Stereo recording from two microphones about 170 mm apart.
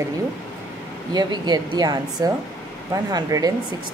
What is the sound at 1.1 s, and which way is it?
Speech, 25° right (ahead or behind).